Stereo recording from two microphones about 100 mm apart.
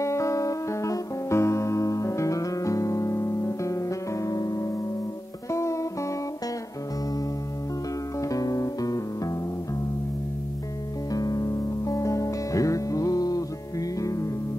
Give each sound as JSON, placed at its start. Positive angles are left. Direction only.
{"t": 0.0, "sound": "music", "side_deg": 30}
{"t": 8.2, "sound": "music", "side_deg": 35}
{"t": 11.1, "sound": "music", "side_deg": 40}